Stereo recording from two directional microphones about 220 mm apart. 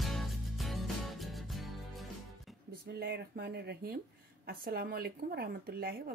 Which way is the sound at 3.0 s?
50° right (ahead or behind).